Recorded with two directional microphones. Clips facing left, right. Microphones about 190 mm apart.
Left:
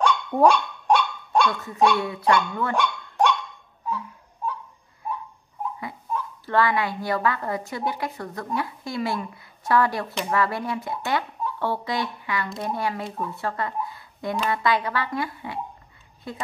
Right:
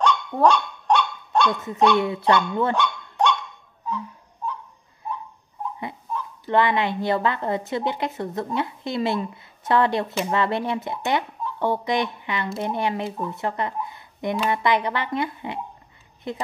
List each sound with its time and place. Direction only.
0.0 s dog: 10° left (ahead or behind)
1.5 s a woman's voice: 20° right (ahead or behind)
2.7 s dog: 10° left (ahead or behind)
6.4 s a woman's voice: 20° right (ahead or behind)